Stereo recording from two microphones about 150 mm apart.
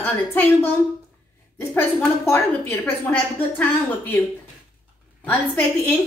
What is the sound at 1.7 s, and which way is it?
A woman's voice, 15° left (ahead or behind).